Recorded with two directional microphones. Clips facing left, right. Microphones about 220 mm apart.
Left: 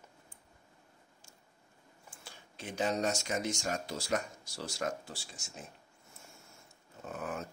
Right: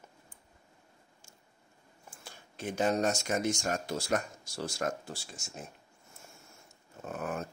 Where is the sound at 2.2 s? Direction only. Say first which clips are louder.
Right 7 dB; 50° right (ahead or behind).